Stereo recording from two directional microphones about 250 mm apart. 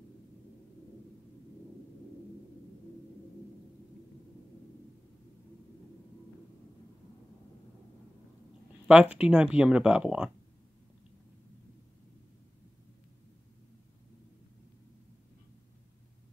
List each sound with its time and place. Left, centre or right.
8.8 s speech: centre